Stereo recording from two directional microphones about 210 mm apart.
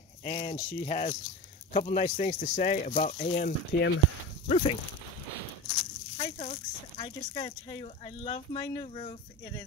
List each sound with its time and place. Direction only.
0.2 s speech: 20° left (ahead or behind)
3.3 s speech: 45° left (ahead or behind)
4.5 s speech: 30° left (ahead or behind)
6.1 s speech: 30° left (ahead or behind)